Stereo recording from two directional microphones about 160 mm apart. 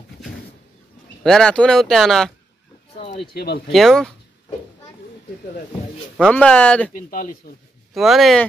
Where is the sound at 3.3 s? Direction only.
80° left.